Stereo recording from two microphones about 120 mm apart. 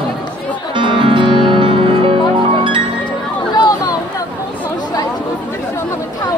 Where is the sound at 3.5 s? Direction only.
35° left (ahead or behind).